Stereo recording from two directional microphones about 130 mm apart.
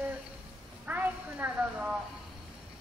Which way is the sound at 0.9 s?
15° right (ahead or behind).